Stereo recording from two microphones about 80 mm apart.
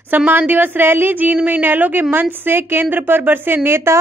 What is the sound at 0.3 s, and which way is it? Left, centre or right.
A woman's voice, right.